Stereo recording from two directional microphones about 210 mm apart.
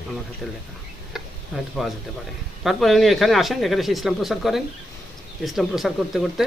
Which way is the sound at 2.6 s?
Centre (ahead or behind).